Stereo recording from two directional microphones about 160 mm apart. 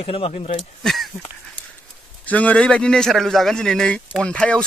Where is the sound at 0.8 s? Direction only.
Centre (ahead or behind).